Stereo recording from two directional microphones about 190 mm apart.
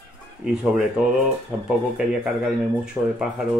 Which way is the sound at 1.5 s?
10° right (ahead or behind).